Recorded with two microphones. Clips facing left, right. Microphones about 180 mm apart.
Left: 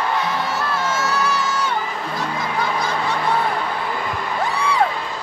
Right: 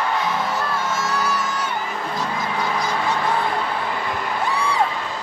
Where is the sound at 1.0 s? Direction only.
75° left (ahead or behind).